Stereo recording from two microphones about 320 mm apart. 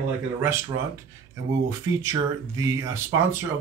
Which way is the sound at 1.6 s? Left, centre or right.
Centre.